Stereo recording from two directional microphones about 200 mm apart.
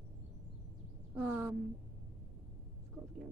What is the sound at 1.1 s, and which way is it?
Speech, 10° right (ahead or behind).